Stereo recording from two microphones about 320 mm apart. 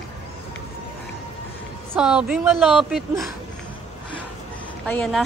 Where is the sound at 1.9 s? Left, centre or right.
Centre.